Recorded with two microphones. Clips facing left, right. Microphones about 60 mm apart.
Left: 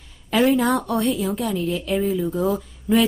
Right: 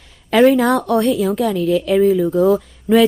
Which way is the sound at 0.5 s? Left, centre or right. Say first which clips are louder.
Right 5 dB; centre.